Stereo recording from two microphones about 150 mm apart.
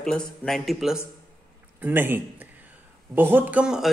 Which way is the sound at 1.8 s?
15° right (ahead or behind).